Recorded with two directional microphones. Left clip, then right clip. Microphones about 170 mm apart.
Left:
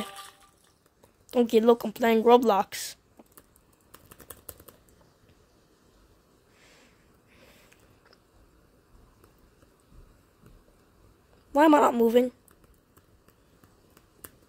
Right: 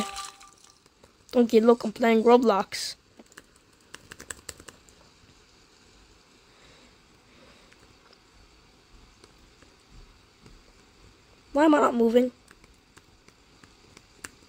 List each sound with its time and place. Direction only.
0.0 s liquid: 25° right (ahead or behind)
1.3 s speech: 5° right (ahead or behind)
4.2 s a sound: 15° right (ahead or behind)
11.5 s a woman's voice: 5° left (ahead or behind)